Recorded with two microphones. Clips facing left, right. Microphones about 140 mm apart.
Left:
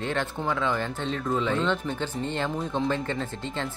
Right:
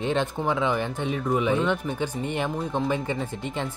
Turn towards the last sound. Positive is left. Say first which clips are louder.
# right 2 dB
turn(degrees=-15)  # may be behind; listen again after turning